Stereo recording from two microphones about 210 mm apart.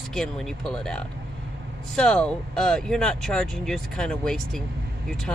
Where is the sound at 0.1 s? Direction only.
Centre (ahead or behind).